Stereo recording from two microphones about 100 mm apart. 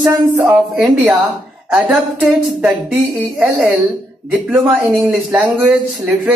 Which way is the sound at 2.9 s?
15° right (ahead or behind).